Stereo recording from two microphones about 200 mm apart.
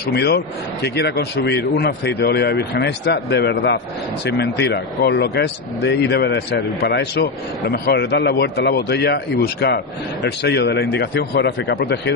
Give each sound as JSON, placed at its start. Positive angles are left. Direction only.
{"t": 0.1, "sound": "speech", "side_deg": 55}